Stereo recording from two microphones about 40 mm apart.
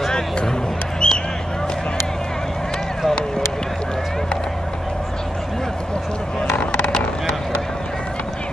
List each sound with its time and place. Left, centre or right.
0.1 s vehicle: centre
1.0 s basketball bounce: left
6.6 s a sound: left